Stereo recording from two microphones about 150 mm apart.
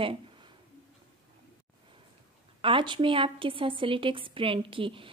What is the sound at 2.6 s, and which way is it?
A woman's voice, 35° right (ahead or behind).